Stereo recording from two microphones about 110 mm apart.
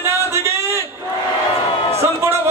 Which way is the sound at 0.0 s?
25° right (ahead or behind).